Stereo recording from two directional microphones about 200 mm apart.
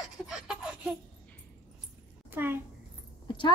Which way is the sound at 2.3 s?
10° right (ahead or behind).